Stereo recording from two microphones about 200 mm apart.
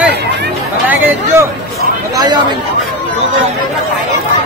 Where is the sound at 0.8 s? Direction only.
10° right (ahead or behind).